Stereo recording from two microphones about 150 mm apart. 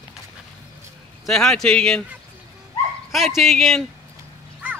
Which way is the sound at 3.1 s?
Centre (ahead or behind).